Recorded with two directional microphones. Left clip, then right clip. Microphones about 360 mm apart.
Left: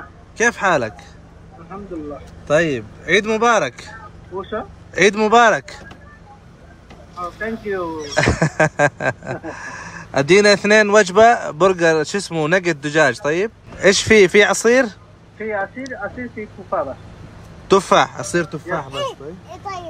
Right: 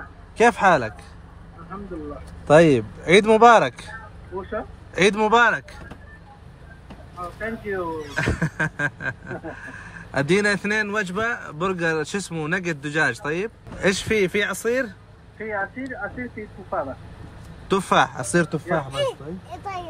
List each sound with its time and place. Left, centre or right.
0.4 s speech: centre
2.4 s speech: centre
4.4 s speech: centre
4.9 s speech: centre
7.3 s speech: centre
8.2 s a sound: centre
17.6 s speech: centre